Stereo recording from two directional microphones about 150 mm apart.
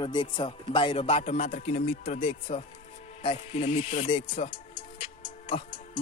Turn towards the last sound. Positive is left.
turn(degrees=40)  # may be behind; listen again after turning